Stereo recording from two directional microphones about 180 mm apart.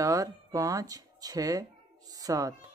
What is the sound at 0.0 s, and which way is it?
Speech, 20° right (ahead or behind).